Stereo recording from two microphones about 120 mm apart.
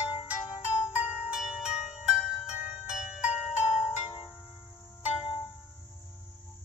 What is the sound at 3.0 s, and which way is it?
Music, centre (ahead or behind).